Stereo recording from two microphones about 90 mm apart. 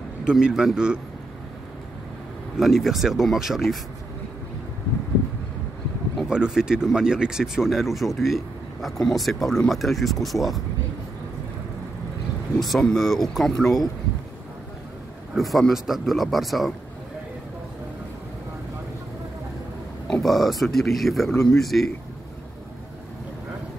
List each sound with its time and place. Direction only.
0.2 s speech: 10° right (ahead or behind)
2.6 s speech: centre (ahead or behind)
6.2 s speech: 10° right (ahead or behind)
12.5 s speech: centre (ahead or behind)
15.3 s speech: centre (ahead or behind)
20.1 s speech: centre (ahead or behind)